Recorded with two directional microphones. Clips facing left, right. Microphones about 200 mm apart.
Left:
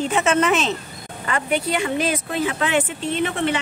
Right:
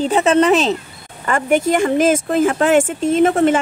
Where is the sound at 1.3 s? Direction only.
45° right (ahead or behind).